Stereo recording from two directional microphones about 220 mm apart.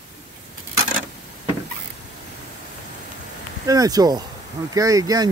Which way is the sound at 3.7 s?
15° right (ahead or behind).